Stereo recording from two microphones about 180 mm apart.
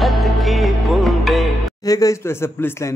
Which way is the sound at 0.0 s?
Centre (ahead or behind).